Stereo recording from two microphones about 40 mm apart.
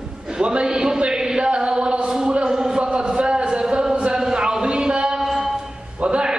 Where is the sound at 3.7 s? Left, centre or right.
Centre.